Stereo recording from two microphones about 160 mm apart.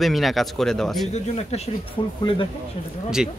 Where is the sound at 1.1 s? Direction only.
40° left (ahead or behind).